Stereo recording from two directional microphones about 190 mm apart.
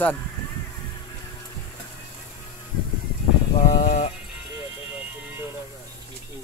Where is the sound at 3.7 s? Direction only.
40° left (ahead or behind).